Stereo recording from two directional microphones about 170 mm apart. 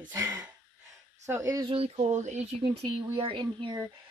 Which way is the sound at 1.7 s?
35° right (ahead or behind).